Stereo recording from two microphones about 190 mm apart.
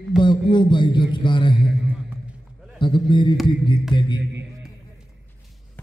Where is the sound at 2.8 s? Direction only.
25° left (ahead or behind).